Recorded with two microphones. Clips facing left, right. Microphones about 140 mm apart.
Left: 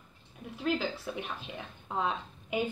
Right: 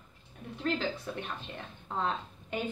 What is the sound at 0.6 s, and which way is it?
Speech, 5° left (ahead or behind).